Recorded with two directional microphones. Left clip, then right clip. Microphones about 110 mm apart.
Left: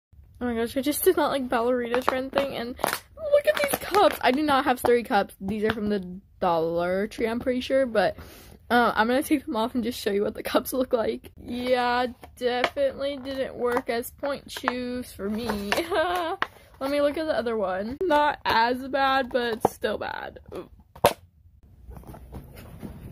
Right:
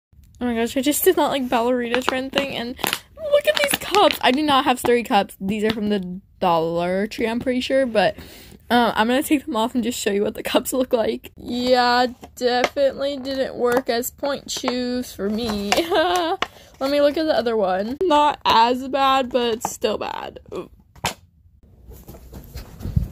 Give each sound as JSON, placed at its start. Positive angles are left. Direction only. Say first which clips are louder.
{"t": 0.4, "sound": "speech", "louder": "right 5 dB", "side_deg": -5}
{"t": 2.5, "sound": "a sound", "louder": "right 3 dB", "side_deg": 5}
{"t": 4.5, "sound": "speech", "louder": "right 3 dB", "side_deg": 5}
{"t": 11.4, "sound": "speech", "louder": "right 7 dB", "side_deg": -30}
{"t": 15.8, "sound": "a sound", "louder": "right 7 dB", "side_deg": -30}
{"t": 16.8, "sound": "speech", "louder": "right 6 dB", "side_deg": -30}
{"t": 18.0, "sound": "speech", "louder": "right 5 dB", "side_deg": -15}